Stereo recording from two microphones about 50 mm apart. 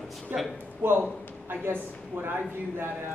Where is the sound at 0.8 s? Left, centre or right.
Right.